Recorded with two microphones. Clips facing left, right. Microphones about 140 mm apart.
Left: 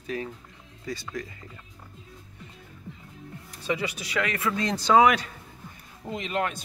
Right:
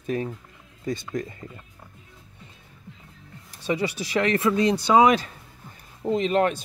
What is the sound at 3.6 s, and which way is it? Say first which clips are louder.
Speech: right 4 dB; 30° right (ahead or behind).